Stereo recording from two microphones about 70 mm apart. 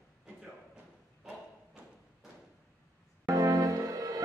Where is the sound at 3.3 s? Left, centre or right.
Right.